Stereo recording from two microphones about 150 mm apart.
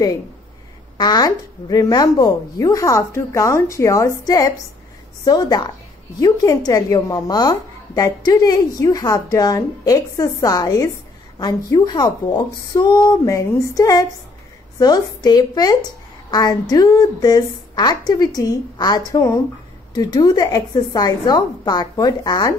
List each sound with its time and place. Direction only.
0.9 s a woman's voice: 25° left (ahead or behind)
5.2 s a woman's voice: 25° left (ahead or behind)